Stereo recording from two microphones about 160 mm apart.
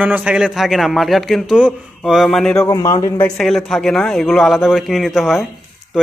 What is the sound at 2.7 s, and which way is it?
Speech, 20° left (ahead or behind).